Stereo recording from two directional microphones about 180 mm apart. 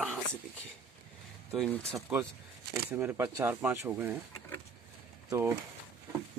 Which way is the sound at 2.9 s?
10° right (ahead or behind).